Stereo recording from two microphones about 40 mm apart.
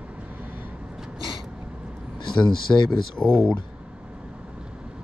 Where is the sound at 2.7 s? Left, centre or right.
Left.